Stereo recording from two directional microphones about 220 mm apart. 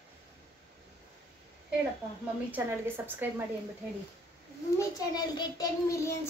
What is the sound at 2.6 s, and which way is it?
Speech, 10° right (ahead or behind).